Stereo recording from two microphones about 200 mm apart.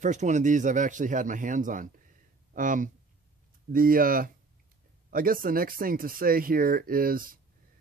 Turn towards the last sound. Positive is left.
turn(degrees=-45)  # may be behind; listen again after turning